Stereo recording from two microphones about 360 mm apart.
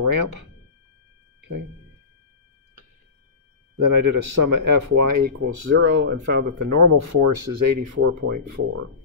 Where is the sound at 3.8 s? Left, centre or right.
Right.